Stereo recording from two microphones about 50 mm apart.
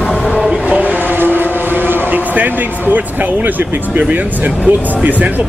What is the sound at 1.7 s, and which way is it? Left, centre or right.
Speech, right.